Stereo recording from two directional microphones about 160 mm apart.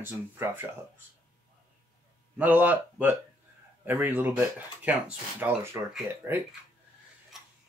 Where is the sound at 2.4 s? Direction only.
10° right (ahead or behind).